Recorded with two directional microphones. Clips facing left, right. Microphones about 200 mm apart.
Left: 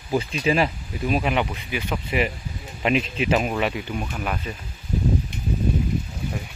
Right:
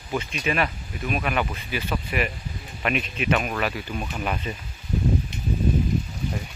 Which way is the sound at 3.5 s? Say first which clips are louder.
Left 3 dB; 15° left (ahead or behind).